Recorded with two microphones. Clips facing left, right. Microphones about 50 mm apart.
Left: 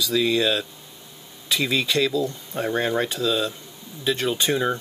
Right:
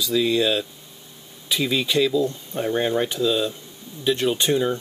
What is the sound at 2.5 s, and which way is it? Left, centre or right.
Speech, centre.